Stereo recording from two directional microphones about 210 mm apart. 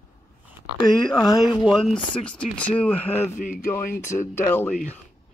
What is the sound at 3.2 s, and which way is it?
Speech, 35° left (ahead or behind).